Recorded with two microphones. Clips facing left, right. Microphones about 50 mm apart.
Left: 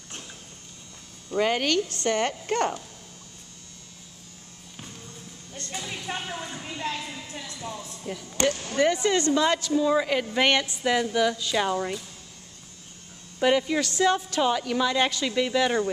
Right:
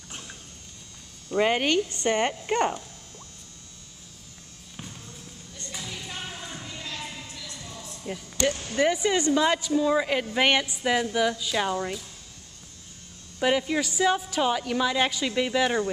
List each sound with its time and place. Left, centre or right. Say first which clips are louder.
0.1 s a sound: even; centre
1.3 s a woman's voice: right 1 dB; centre
5.7 s vehicle: left 3 dB; left
7.2 s a sound: left 5 dB; left
8.0 s a woman's voice: left 1 dB; centre
13.4 s a woman's voice: left 2 dB; centre